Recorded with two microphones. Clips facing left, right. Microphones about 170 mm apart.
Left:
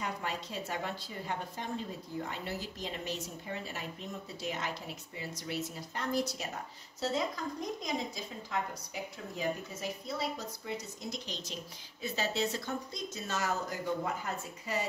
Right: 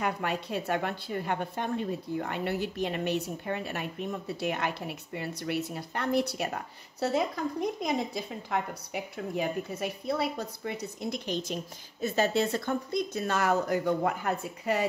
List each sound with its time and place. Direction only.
0.0 s a woman's voice: 65° right (ahead or behind)